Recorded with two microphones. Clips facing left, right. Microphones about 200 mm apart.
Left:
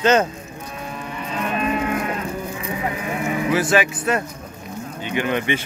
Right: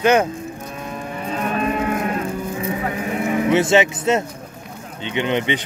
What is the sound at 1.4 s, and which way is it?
Cattle, 45° right (ahead or behind).